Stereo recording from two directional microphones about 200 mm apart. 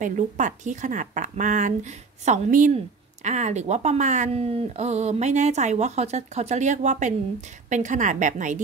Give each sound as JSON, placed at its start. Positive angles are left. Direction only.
{"t": 0.0, "sound": "speech", "side_deg": -40}